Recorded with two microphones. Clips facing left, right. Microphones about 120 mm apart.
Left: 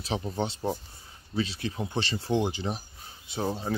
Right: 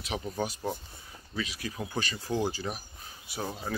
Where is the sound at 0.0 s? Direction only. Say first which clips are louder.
Left 3 dB; 30° left (ahead or behind).